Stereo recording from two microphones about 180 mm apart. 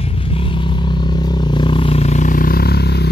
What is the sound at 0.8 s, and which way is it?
Vehicle, 25° left (ahead or behind).